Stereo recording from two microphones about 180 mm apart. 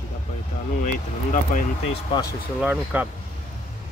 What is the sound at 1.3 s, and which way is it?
Speech, 45° left (ahead or behind).